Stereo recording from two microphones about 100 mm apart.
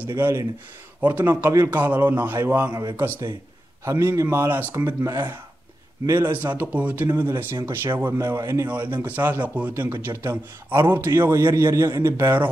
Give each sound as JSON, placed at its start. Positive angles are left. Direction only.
{"t": 0.1, "sound": "speech", "side_deg": -25}
{"t": 2.7, "sound": "speech", "side_deg": -40}
{"t": 3.8, "sound": "speech", "side_deg": -30}
{"t": 8.6, "sound": "speech", "side_deg": -20}